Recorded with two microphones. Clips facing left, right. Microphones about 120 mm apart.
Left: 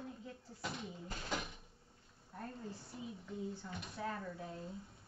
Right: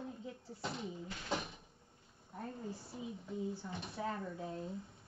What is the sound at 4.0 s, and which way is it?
Speech, 20° right (ahead or behind).